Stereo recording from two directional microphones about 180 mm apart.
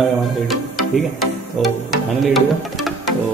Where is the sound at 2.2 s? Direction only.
Centre (ahead or behind).